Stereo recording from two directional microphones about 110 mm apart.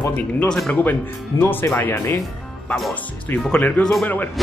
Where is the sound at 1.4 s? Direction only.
20° left (ahead or behind).